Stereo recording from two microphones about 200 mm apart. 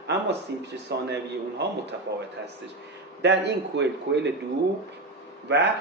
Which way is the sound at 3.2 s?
60° right (ahead or behind).